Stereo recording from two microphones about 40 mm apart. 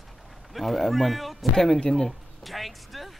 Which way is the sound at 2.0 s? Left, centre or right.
Centre.